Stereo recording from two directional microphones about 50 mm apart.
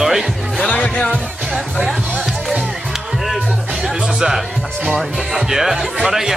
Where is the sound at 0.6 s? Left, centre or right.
Left.